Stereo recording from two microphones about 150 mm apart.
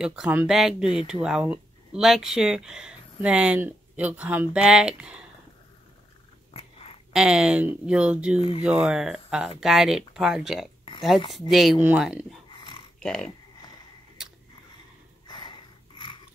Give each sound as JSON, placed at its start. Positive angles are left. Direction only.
{"t": 0.0, "sound": "speech", "side_deg": -5}
{"t": 7.1, "sound": "speech", "side_deg": -5}
{"t": 8.4, "sound": "speech", "side_deg": 35}
{"t": 8.6, "sound": "speech", "side_deg": -5}
{"t": 15.2, "sound": "snort", "side_deg": 30}